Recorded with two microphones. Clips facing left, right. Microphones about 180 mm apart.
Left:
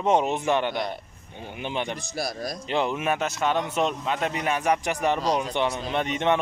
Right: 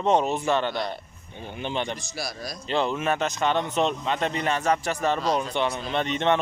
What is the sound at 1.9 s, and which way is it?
Speech, 50° left (ahead or behind).